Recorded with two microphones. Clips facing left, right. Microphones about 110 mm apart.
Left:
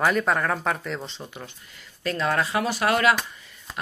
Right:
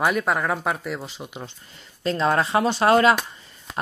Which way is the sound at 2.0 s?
30° right (ahead or behind).